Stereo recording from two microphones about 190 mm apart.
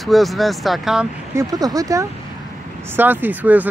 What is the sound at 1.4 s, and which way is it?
Speech, 20° right (ahead or behind).